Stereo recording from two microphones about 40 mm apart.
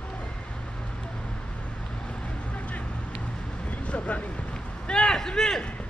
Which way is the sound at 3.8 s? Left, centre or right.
Left.